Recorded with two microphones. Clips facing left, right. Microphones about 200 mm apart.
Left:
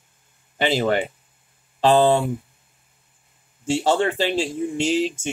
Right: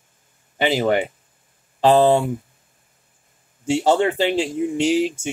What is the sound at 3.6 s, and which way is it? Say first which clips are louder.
Speech: right 2 dB; 15° right (ahead or behind).